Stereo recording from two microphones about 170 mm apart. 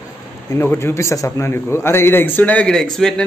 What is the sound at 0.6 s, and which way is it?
A man's voice, 15° left (ahead or behind).